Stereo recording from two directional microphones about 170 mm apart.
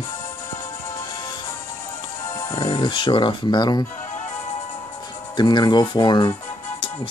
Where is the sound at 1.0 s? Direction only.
25° left (ahead or behind).